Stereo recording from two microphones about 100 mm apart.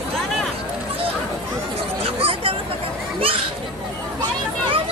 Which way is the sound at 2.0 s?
70° right (ahead or behind).